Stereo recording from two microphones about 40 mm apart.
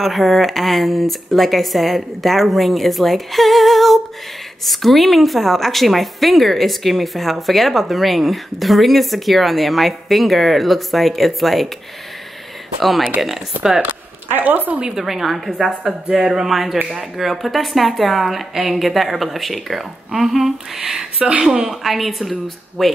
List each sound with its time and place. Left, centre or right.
0.0 s speech: centre
14.3 s a woman's voice: right
15.0 s speech: centre
21.2 s speech: right
21.5 s speech: centre
21.8 s speech: centre